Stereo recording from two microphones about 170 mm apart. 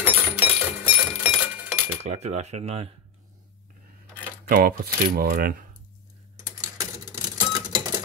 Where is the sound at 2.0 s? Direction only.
40° right (ahead or behind).